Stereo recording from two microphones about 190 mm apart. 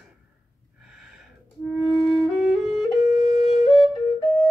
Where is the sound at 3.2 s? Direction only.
35° left (ahead or behind).